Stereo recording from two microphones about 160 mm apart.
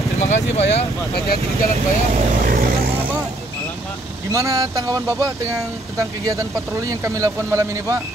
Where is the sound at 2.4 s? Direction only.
65° right (ahead or behind).